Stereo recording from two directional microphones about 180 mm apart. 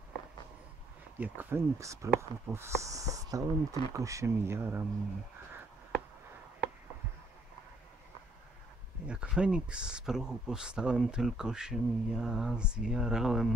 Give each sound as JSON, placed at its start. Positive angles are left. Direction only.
{"t": 1.2, "sound": "speech", "side_deg": -10}
{"t": 9.0, "sound": "speech", "side_deg": -5}